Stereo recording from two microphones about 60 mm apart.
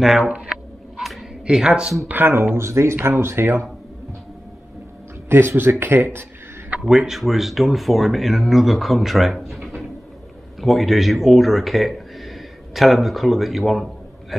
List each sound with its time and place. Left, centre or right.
1.4 s speech: centre
2.0 s speech: right
5.3 s speech: right
6.8 s speech: centre